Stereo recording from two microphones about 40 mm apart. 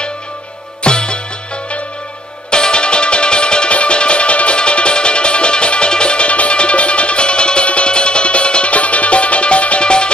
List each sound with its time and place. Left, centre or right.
0.8 s music: left
2.5 s music: left